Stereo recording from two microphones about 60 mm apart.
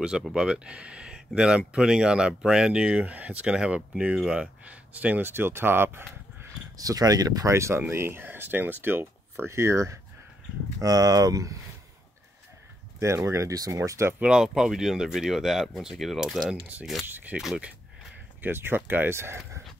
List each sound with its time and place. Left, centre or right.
0.3 s speech: centre
5.3 s speech: right
6.8 s speech: right
7.5 s speech: right
9.5 s speech: right
10.8 s speech: right
13.0 s speech: right
14.2 s speech: centre
17.0 s speech: right
18.4 s speech: right